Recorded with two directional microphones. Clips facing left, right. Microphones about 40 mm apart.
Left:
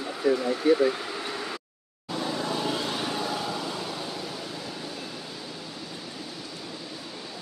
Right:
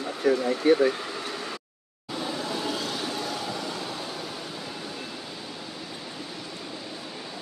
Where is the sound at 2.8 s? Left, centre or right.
Centre.